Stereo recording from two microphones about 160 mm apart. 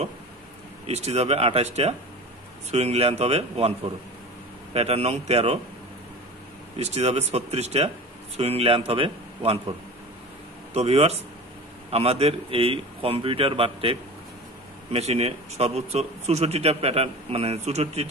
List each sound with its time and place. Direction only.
0.8 s a man's voice: 40° right (ahead or behind)
6.8 s a man's voice: 40° right (ahead or behind)